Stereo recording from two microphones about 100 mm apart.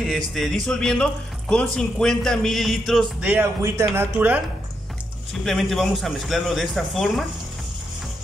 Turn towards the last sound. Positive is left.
turn(degrees=0)  # may be behind; listen again after turning